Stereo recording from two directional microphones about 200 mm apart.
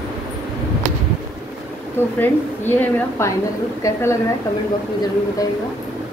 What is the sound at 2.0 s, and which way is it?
A woman's voice, 10° left (ahead or behind).